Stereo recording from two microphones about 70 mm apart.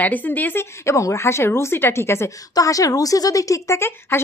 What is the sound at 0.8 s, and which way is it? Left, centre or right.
Speech, left.